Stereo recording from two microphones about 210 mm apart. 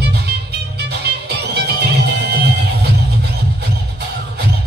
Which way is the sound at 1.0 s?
50° right (ahead or behind).